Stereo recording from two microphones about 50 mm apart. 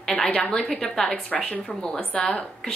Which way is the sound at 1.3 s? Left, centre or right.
Left.